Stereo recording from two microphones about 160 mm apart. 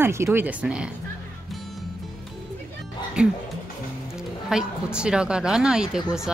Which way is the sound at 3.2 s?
5° right (ahead or behind).